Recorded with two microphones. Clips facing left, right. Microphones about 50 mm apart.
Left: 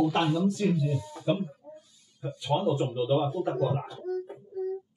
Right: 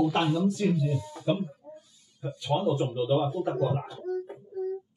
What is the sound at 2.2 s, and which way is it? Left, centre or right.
Speech, centre.